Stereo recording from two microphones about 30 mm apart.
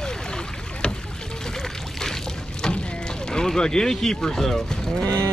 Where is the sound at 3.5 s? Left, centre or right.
Centre.